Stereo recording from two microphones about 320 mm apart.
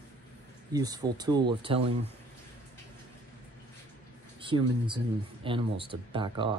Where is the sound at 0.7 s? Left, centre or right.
Centre.